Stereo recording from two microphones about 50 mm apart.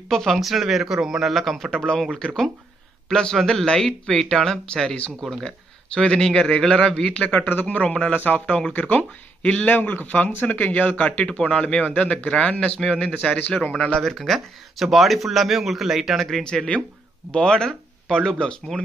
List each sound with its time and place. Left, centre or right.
0.1 s speech: centre
2.1 s a man's voice: centre
5.9 s speech: centre
7.3 s speech: left
7.6 s speech: left
8.7 s speech: left
11.2 s speech: centre
13.9 s speech: centre
17.3 s speech: centre